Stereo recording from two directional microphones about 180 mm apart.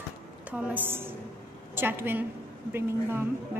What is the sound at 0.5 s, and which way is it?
A woman's voice, 10° right (ahead or behind).